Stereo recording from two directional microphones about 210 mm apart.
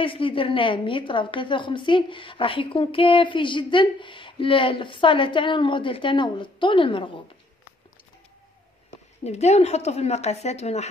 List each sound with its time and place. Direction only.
0.0 s a woman's voice: 25° left (ahead or behind)
9.2 s a woman's voice: 30° left (ahead or behind)